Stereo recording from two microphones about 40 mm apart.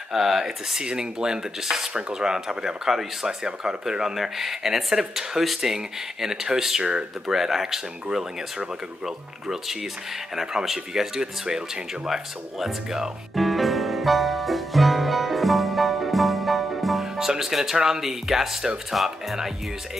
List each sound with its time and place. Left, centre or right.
0.1 s speech: centre
0.7 s speech: centre
6.8 s speech: right
7.2 s speech: centre
13.3 s music: centre
17.5 s speech: centre